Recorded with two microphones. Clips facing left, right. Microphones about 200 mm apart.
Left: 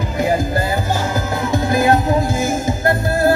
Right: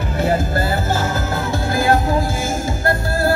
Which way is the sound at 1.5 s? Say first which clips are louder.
Left 3 dB; 20° left (ahead or behind).